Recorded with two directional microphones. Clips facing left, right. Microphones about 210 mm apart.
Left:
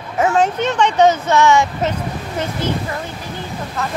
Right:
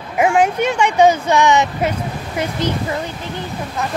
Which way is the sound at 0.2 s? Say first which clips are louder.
Right 1 dB; 10° right (ahead or behind).